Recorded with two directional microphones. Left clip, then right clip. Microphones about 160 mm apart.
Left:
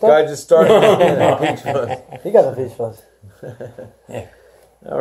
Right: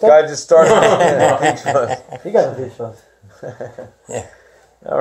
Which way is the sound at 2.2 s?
20° right (ahead or behind).